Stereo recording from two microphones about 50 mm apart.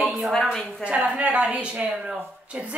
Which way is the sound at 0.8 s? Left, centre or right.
Right.